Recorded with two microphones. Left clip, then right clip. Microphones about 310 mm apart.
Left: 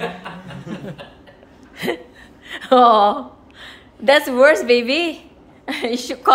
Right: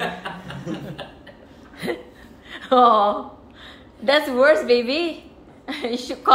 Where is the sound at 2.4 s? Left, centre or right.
Centre.